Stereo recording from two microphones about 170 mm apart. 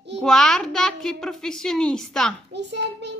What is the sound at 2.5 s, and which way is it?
Speech, 90° right.